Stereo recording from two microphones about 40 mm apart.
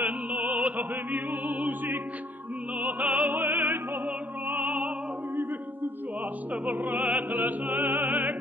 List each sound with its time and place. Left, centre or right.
0.0 s opera: right
3.5 s opera: right
4.5 s opera: right
6.5 s opera: right
7.8 s music: right
8.1 s music: right